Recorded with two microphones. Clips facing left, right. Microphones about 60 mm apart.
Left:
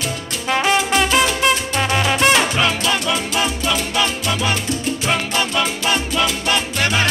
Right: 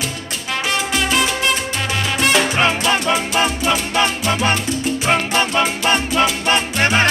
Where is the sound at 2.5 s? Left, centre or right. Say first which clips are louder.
Right 2 dB; right.